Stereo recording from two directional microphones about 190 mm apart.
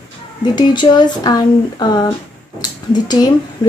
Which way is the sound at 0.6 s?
20° left (ahead or behind).